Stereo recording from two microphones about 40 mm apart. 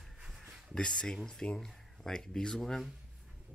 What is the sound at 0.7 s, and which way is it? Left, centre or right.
Speech, centre.